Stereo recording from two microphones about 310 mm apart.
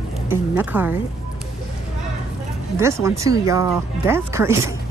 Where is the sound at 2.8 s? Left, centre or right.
Centre.